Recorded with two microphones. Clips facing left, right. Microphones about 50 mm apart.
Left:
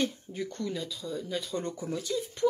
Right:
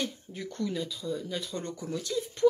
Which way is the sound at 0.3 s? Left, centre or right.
Centre.